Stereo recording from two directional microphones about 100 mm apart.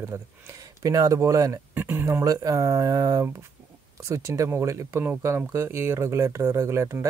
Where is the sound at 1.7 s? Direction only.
20° right (ahead or behind).